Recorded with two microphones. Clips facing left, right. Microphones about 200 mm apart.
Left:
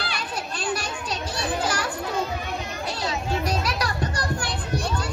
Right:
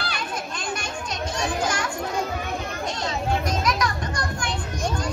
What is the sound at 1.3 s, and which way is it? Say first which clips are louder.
Children playing: right 1 dB; 35° left (ahead or behind).